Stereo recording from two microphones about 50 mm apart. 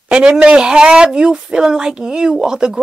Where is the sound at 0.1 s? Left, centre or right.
Right.